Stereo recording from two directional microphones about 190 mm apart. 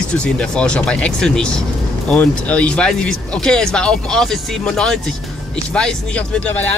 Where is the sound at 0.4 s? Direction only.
5° left (ahead or behind).